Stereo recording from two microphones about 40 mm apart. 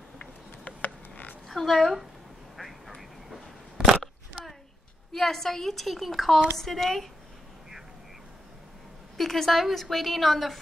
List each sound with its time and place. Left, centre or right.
0.2 s a sound: left
1.5 s a woman's voice: centre
5.1 s a woman's voice: centre
9.1 s a woman's voice: centre